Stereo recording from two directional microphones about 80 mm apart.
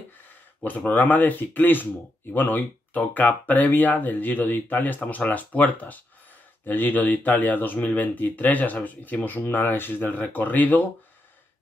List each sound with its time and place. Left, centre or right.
0.6 s speech: centre